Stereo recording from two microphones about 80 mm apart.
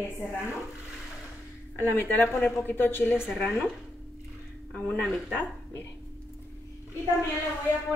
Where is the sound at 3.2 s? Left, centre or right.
Centre.